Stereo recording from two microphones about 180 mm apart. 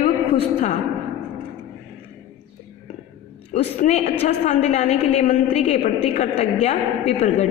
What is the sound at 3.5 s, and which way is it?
A woman's voice, 40° left (ahead or behind).